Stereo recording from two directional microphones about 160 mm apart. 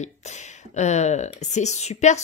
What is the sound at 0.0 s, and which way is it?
A woman's voice, 45° left (ahead or behind).